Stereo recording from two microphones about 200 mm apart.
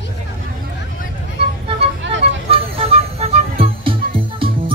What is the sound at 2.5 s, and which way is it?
Music, 30° right (ahead or behind).